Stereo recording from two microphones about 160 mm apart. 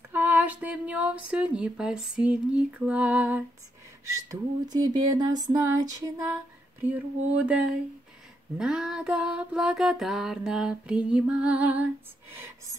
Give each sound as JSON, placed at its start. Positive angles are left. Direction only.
{"t": 0.1, "sound": "speech", "side_deg": -10}
{"t": 4.3, "sound": "a sound", "side_deg": -25}
{"t": 6.8, "sound": "speech", "side_deg": -10}
{"t": 8.5, "sound": "mantra", "side_deg": -5}